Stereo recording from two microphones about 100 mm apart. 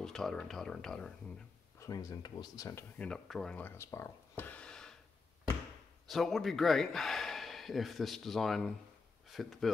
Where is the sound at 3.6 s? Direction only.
20° left (ahead or behind).